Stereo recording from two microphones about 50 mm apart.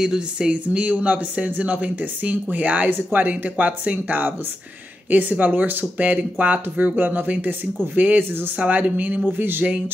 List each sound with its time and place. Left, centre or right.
0.0 s speech: centre
0.5 s speech: right
9.4 s speech: right